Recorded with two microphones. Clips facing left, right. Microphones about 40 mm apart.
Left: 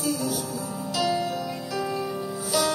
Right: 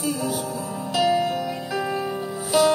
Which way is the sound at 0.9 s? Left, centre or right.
Right.